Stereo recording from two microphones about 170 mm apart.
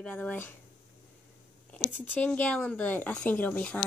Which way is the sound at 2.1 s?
10° left (ahead or behind).